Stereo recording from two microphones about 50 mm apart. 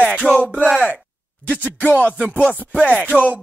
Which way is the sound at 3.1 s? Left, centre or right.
Left.